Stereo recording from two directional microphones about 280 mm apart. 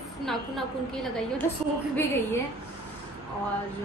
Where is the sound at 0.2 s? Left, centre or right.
Centre.